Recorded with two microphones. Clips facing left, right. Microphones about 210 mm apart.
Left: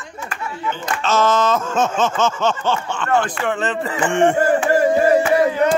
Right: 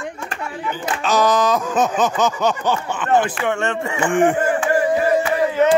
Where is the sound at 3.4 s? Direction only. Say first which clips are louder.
Even; centre (ahead or behind).